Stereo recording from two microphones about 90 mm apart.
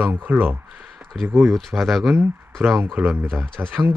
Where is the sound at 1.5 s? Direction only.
Centre (ahead or behind).